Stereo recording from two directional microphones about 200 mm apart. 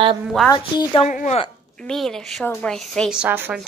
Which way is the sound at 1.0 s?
35° left (ahead or behind).